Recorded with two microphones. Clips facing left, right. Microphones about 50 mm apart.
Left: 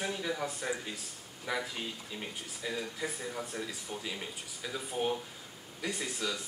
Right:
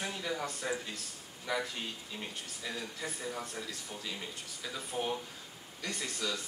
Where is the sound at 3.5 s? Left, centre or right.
Centre.